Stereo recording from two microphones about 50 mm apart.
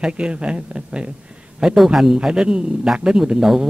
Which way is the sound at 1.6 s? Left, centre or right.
Centre.